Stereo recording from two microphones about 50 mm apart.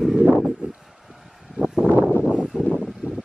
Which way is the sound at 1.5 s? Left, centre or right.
Centre.